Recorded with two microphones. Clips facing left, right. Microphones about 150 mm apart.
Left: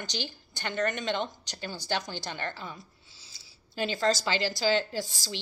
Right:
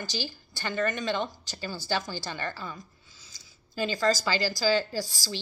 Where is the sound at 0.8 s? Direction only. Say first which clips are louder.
Right 1 dB; 20° left (ahead or behind).